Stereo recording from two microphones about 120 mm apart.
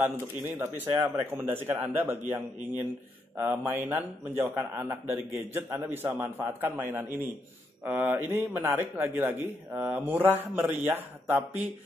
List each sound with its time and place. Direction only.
0.0 s a man's voice: 15° right (ahead or behind)